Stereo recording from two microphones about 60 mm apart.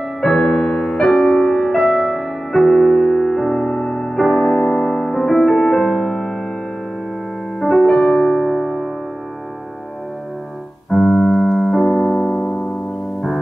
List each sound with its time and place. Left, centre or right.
0.2 s music: centre
7.6 s music: centre
10.9 s keyboard: centre
12.4 s music: centre